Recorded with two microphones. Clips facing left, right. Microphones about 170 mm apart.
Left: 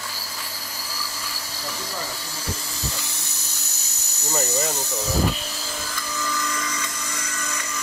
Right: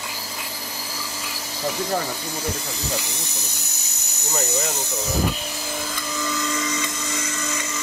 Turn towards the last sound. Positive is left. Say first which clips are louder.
# right 4 dB
turn(degrees=-20)  # may be behind; listen again after turning